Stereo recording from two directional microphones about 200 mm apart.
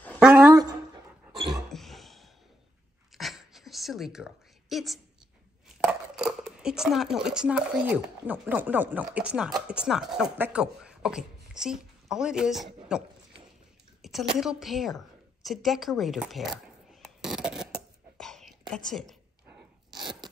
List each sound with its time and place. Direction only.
0.0 s dog: centre (ahead or behind)
0.5 s a sound: 20° right (ahead or behind)
1.7 s a sound: centre (ahead or behind)
7.8 s speech: 10° right (ahead or behind)
14.0 s a woman's voice: centre (ahead or behind)
18.2 s whispering: centre (ahead or behind)
20.0 s biting: 20° right (ahead or behind)